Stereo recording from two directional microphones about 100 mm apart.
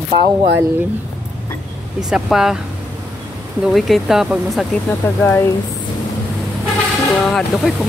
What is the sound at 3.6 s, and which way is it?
Speech, centre (ahead or behind).